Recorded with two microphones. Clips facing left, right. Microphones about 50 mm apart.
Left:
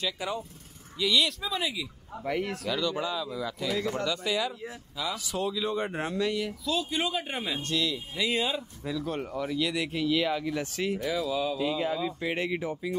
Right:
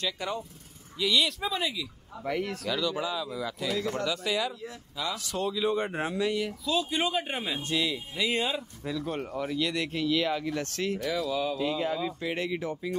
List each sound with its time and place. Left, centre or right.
0.0 s speech: centre
8.2 s speech: centre
12.2 s speech: centre